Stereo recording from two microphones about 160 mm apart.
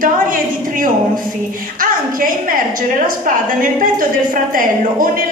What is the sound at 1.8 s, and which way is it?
A woman's voice, 60° right (ahead or behind).